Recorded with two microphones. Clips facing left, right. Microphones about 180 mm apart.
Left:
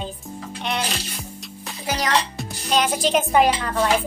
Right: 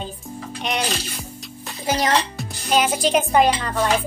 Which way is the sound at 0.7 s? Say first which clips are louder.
Right 1 dB; 15° right (ahead or behind).